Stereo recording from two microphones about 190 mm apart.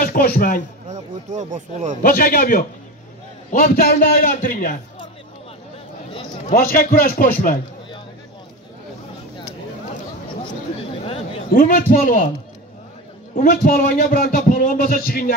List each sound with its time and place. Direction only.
0.0 s a man's voice: 50° left (ahead or behind)
0.8 s speech: 40° right (ahead or behind)
2.0 s a man's voice: 50° left (ahead or behind)
6.4 s a man's voice: 45° left (ahead or behind)
11.5 s a man's voice: 50° left (ahead or behind)
13.4 s a man's voice: 50° left (ahead or behind)